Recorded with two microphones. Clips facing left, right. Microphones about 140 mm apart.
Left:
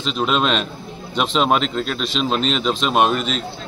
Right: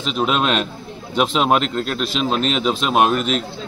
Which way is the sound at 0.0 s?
5° right (ahead or behind).